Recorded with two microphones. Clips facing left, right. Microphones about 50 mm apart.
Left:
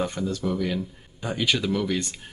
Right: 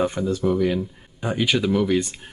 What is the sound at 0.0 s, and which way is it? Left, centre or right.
Speech, centre.